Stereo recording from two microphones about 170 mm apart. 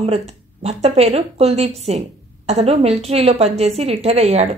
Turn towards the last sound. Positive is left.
turn(degrees=-40)  # may be behind; listen again after turning